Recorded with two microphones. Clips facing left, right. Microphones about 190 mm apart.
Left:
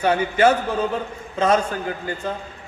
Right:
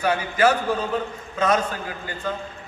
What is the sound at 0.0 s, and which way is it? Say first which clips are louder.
Speech: left 3 dB; 25° left (ahead or behind).